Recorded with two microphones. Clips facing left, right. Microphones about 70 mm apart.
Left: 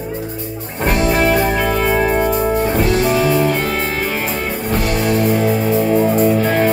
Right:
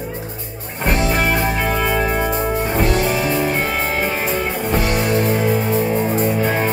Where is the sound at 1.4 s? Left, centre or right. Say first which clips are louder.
Left 3 dB; centre.